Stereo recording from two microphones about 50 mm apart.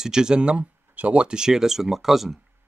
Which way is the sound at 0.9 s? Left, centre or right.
Right.